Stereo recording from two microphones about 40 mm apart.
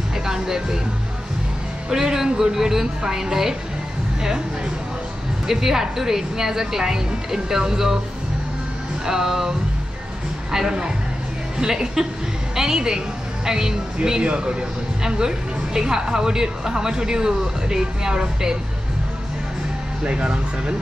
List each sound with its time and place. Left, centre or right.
0.3 s a woman's voice: centre
1.9 s a woman's voice: centre
5.5 s a woman's voice: centre
9.0 s a woman's voice: centre
10.5 s a woman's voice: centre
20.0 s speech: right